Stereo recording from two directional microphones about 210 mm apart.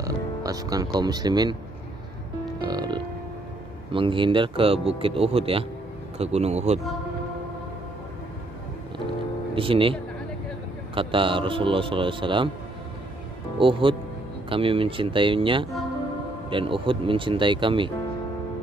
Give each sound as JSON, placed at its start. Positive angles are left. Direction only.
{"t": 0.0, "sound": "speech", "side_deg": -15}
{"t": 2.6, "sound": "speech", "side_deg": -20}
{"t": 9.6, "sound": "speech", "side_deg": -25}
{"t": 11.0, "sound": "speech", "side_deg": -25}
{"t": 13.6, "sound": "speech", "side_deg": -25}